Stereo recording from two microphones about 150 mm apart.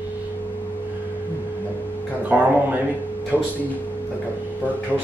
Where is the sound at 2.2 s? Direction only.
10° right (ahead or behind).